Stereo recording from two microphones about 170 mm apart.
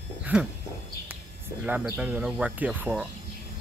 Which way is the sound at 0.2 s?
5° right (ahead or behind).